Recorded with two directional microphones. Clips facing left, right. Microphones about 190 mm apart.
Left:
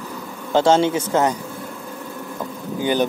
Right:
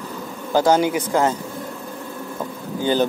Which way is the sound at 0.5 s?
25° left (ahead or behind).